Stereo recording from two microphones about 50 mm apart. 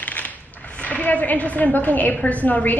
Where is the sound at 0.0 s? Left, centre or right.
Left.